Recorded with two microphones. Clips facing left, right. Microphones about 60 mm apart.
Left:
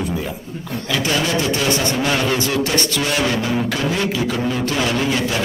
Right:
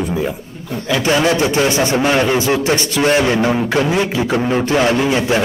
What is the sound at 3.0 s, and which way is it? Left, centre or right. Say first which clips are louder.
A man's voice: right 6 dB; right.